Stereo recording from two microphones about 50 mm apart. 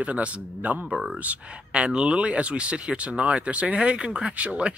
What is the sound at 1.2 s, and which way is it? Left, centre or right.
Speech, right.